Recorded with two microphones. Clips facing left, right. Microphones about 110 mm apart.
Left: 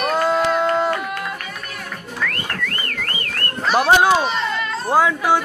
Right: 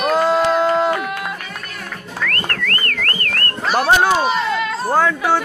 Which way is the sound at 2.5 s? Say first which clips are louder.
Right 3 dB; 10° left (ahead or behind).